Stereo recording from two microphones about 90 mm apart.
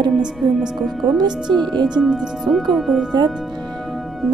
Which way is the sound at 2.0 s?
5° right (ahead or behind).